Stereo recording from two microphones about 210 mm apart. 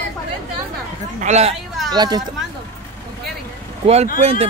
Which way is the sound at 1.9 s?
20° right (ahead or behind).